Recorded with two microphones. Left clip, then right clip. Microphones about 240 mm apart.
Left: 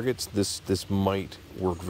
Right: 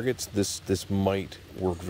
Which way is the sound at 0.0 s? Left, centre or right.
Centre.